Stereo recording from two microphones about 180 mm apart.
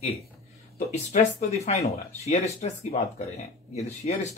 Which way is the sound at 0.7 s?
40° left (ahead or behind).